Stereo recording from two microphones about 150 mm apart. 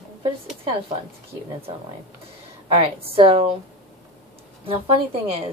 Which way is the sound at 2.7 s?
40° right (ahead or behind).